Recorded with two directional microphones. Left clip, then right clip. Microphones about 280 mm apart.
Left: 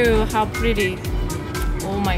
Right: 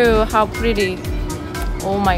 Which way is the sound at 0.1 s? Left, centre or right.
Right.